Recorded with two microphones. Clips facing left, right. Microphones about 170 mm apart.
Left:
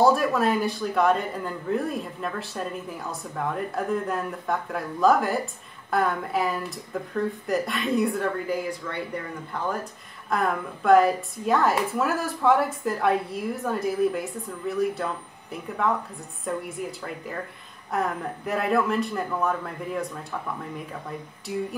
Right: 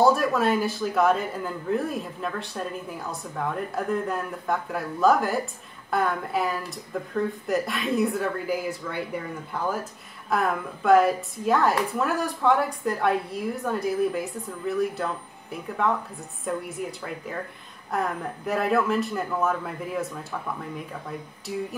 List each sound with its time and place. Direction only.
0.0 s a man's voice: centre (ahead or behind)